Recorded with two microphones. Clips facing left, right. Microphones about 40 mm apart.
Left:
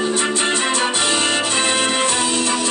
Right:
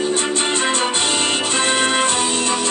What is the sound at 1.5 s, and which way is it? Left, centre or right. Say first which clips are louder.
Music: right 1 dB; right.